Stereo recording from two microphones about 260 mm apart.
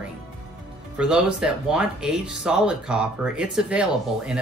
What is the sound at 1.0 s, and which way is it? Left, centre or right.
Speech, centre.